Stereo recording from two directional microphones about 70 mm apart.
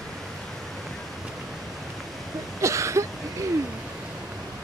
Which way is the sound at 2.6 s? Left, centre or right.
Right.